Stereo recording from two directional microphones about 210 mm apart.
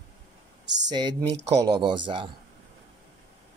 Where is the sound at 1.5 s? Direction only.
20° right (ahead or behind).